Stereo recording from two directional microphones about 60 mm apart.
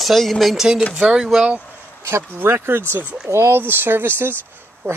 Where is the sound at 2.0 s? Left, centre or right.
Right.